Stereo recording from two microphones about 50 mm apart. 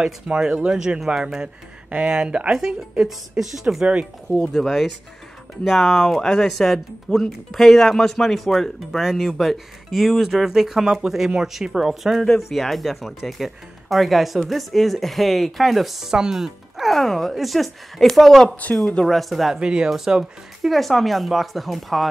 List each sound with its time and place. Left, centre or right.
0.0 s speech: centre
4.3 s speech: centre
19.6 s speech: centre
20.7 s speech: centre